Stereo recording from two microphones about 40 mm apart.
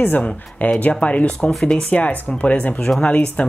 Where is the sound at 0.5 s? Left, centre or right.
Left.